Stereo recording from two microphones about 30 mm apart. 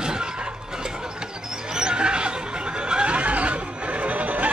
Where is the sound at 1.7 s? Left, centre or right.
Right.